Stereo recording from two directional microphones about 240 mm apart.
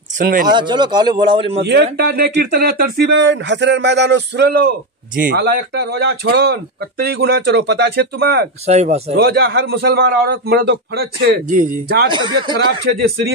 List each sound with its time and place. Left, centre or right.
0.2 s a man's voice: right
0.5 s a man's voice: centre
1.6 s speech: right
8.6 s a man's voice: right
9.1 s a man's voice: right
12.1 s a man's voice: centre